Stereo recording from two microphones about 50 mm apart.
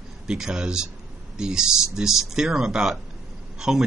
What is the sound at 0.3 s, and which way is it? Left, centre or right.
Speech, centre.